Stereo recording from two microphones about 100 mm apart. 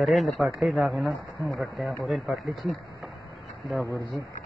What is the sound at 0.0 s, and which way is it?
Speech, centre (ahead or behind).